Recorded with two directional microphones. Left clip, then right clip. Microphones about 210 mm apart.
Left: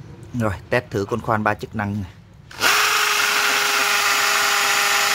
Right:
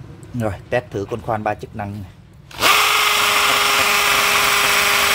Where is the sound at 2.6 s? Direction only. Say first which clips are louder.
Right 3 dB; 15° right (ahead or behind).